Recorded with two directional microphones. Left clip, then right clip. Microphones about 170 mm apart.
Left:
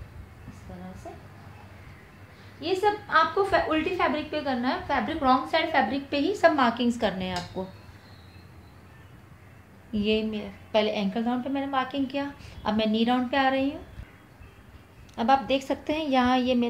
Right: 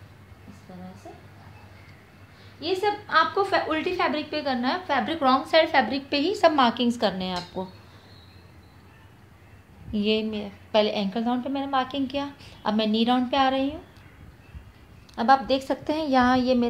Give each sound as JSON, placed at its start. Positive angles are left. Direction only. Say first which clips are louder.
{"t": 2.6, "sound": "a woman's voice", "louder": "even", "side_deg": -40}
{"t": 9.9, "sound": "a woman's voice", "louder": "right 1 dB", "side_deg": -30}
{"t": 15.1, "sound": "a woman's voice", "louder": "right 3 dB", "side_deg": -25}